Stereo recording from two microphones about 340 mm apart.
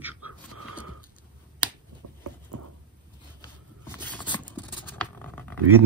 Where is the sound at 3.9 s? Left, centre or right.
Centre.